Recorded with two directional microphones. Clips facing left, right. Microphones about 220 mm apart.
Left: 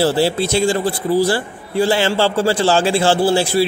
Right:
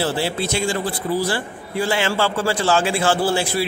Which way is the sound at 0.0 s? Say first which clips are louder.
Left 6 dB; 35° left (ahead or behind).